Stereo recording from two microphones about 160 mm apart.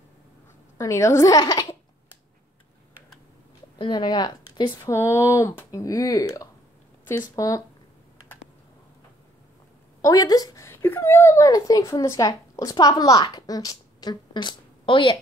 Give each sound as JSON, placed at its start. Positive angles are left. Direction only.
{"t": 0.7, "sound": "a sound", "side_deg": 20}
{"t": 3.7, "sound": "a woman's voice", "side_deg": 30}
{"t": 4.9, "sound": "speech", "side_deg": 15}
{"t": 10.0, "sound": "speech", "side_deg": 25}